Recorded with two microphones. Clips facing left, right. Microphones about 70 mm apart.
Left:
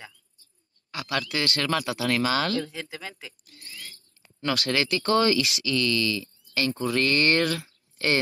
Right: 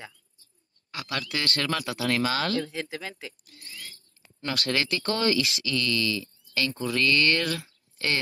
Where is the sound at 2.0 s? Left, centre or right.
Left.